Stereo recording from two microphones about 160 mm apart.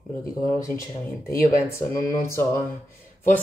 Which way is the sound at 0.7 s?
20° left (ahead or behind).